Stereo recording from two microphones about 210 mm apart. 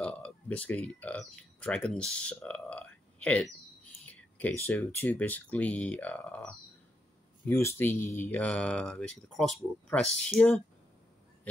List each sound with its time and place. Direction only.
0.0 s speech: 5° left (ahead or behind)